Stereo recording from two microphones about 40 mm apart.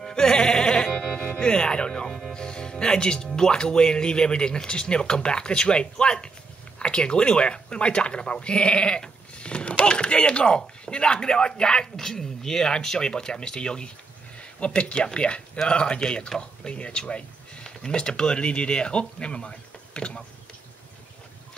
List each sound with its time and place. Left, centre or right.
0.0 s music: centre
1.2 s speech: left